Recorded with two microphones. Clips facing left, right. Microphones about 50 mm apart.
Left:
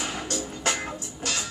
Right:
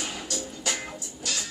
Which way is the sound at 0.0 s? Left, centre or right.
Left.